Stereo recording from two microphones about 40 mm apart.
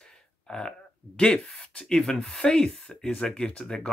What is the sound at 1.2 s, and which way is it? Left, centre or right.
Speech, left.